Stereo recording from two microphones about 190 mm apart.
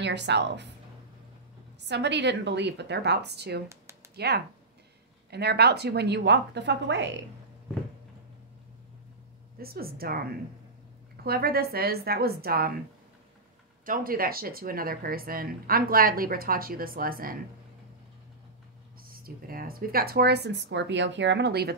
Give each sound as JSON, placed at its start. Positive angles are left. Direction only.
{"t": 0.0, "sound": "speech", "side_deg": -65}
{"t": 1.9, "sound": "speech", "side_deg": -65}
{"t": 3.6, "sound": "a sound", "side_deg": -15}
{"t": 4.1, "sound": "speech", "side_deg": -60}
{"t": 9.6, "sound": "speech", "side_deg": -55}
{"t": 11.2, "sound": "speech", "side_deg": -55}
{"t": 13.8, "sound": "speech", "side_deg": -50}
{"t": 19.0, "sound": "speech", "side_deg": -50}